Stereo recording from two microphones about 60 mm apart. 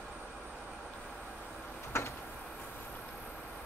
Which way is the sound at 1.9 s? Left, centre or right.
Left.